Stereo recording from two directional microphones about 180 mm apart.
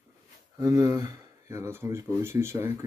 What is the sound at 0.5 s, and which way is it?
Speech, 15° right (ahead or behind).